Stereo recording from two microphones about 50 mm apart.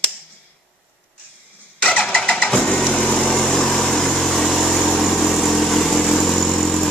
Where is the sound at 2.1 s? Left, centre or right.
Centre.